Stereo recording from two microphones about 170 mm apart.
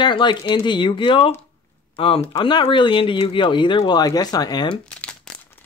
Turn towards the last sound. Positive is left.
turn(degrees=5)  # may be behind; listen again after turning